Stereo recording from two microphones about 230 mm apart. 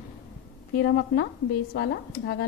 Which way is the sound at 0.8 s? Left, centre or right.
Left.